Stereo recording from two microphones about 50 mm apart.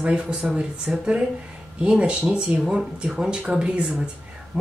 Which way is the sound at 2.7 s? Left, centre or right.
Centre.